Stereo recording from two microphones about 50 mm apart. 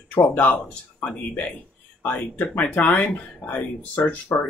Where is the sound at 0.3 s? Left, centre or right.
Left.